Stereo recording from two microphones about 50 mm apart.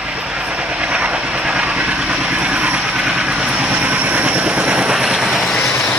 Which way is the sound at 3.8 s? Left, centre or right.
Right.